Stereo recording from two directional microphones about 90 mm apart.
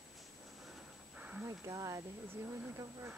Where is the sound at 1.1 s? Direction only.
15° right (ahead or behind).